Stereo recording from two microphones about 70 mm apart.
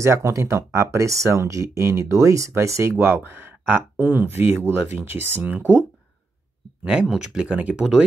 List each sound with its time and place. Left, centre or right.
0.0 s speech: right
3.0 s speech: right